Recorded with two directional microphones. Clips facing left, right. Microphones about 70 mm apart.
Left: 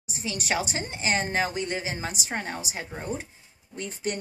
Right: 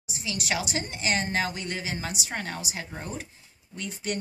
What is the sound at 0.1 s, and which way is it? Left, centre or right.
A woman's voice, left.